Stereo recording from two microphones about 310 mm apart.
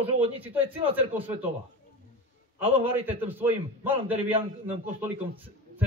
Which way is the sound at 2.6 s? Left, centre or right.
Centre.